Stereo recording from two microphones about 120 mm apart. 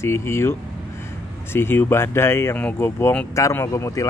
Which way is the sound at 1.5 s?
20° left (ahead or behind).